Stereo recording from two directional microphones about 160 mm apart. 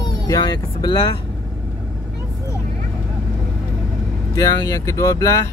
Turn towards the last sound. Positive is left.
turn(degrees=20)  # may be behind; listen again after turning